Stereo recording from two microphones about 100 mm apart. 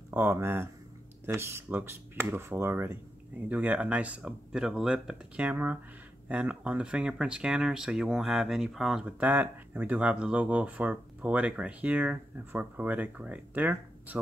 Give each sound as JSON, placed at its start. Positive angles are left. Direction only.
{"t": 0.1, "sound": "speech", "side_deg": -20}
{"t": 9.2, "sound": "speech", "side_deg": -15}